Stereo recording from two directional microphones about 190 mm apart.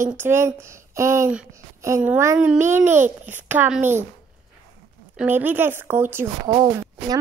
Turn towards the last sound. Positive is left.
turn(degrees=-20)  # may be behind; listen again after turning